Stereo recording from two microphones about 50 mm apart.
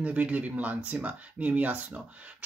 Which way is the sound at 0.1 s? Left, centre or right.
Right.